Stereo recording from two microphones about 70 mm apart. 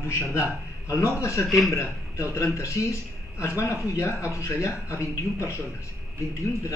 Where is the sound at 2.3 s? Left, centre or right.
Left.